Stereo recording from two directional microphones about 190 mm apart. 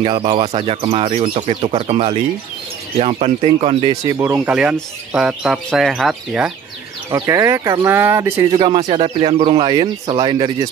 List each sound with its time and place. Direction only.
0.0 s speech: 30° right (ahead or behind)
4.0 s speech: 10° right (ahead or behind)
7.1 s speech: 15° right (ahead or behind)
8.5 s speech: 25° right (ahead or behind)